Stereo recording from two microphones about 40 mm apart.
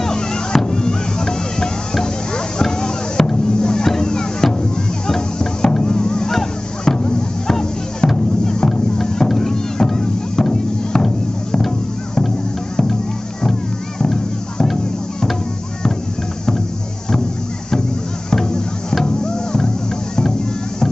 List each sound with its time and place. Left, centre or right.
0.0 s music: centre
6.3 s a sound: centre
7.0 s fireworks: left
7.4 s music: centre
13.5 s music: centre
18.3 s music: centre